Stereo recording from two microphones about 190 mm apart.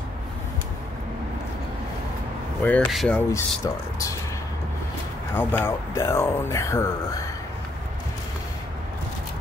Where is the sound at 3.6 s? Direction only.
15° left (ahead or behind).